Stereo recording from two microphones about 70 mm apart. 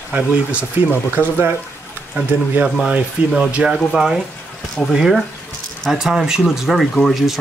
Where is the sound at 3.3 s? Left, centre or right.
Centre.